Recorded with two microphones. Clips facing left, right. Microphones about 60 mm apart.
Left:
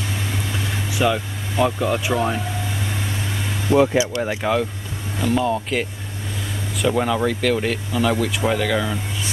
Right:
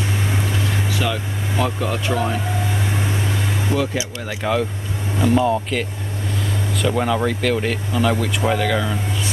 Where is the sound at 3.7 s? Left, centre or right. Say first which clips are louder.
Left 9 dB; left.